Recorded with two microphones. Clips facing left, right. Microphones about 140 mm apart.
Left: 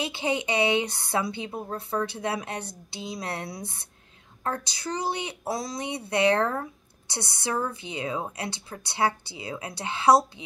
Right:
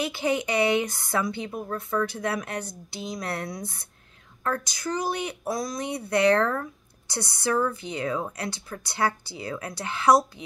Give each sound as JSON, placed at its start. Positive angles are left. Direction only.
{"t": 0.0, "sound": "speech", "side_deg": 25}